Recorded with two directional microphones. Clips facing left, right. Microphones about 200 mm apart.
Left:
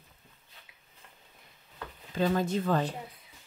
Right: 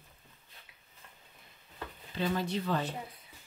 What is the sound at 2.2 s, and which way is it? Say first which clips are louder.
Speech: left 5 dB; 50° left (ahead or behind).